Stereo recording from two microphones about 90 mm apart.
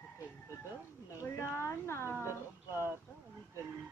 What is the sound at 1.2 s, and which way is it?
A woman's voice, 25° left (ahead or behind).